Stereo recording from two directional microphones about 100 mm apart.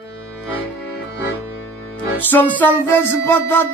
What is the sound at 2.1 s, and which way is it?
Music, 20° left (ahead or behind).